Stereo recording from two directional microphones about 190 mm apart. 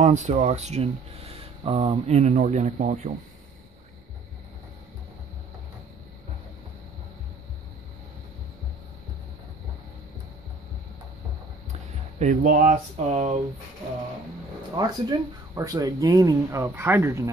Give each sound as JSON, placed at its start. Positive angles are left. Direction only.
{"t": 0.0, "sound": "speech", "side_deg": -40}
{"t": 12.2, "sound": "speech", "side_deg": -40}
{"t": 14.8, "sound": "speech", "side_deg": -20}